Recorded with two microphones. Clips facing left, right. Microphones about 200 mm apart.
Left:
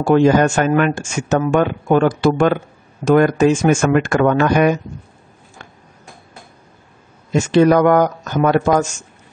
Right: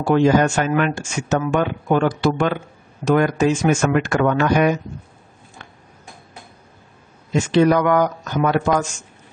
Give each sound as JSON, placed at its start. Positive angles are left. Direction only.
{"t": 0.0, "sound": "speech", "side_deg": 50}
{"t": 7.3, "sound": "speech", "side_deg": 45}